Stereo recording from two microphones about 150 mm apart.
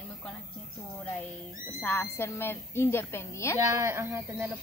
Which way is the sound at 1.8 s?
15° left (ahead or behind).